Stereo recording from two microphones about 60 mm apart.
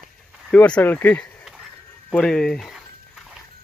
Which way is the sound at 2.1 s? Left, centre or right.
Centre.